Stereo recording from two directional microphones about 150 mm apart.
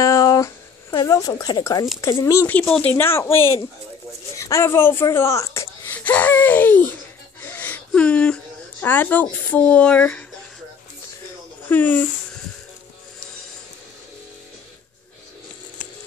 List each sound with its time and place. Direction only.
0.0 s a sound: 25° left (ahead or behind)
2.0 s speech: 20° left (ahead or behind)
5.9 s laughter: 10° left (ahead or behind)
7.4 s whimper: 10° left (ahead or behind)
8.8 s speech: 10° left (ahead or behind)
11.7 s speech: 10° left (ahead or behind)